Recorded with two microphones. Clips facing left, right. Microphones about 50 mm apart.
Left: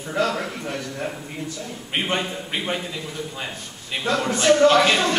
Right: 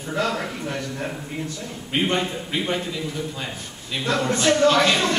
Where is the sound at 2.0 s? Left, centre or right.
Centre.